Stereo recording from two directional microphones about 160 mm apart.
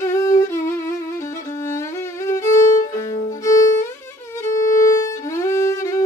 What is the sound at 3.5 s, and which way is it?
Music, 20° left (ahead or behind).